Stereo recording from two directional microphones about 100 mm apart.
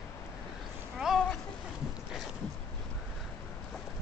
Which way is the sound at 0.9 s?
5° right (ahead or behind).